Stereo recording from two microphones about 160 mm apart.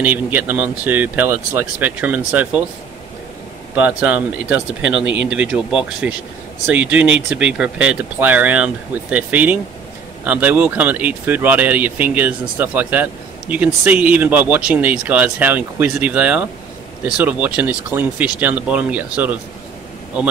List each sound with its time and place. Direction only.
0.0 s speech: 10° right (ahead or behind)
3.7 s speech: 10° right (ahead or behind)